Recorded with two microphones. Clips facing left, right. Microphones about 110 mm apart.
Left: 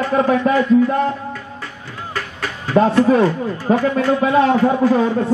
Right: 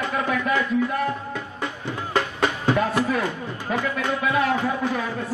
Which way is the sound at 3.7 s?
35° left (ahead or behind).